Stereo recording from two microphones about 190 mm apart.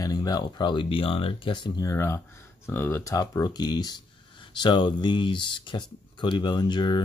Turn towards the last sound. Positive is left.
turn(degrees=25)  # may be behind; listen again after turning